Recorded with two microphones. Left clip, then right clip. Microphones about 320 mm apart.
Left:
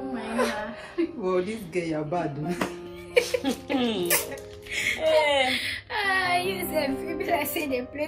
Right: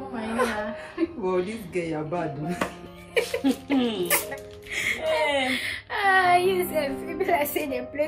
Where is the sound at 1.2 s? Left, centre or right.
Centre.